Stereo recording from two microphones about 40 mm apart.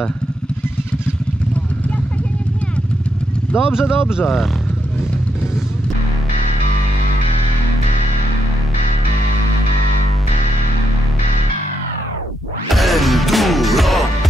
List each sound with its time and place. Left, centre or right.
3.5 s speech: centre
12.7 s music: centre